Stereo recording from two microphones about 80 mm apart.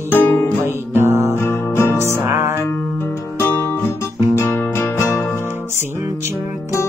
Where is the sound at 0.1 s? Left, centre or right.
Left.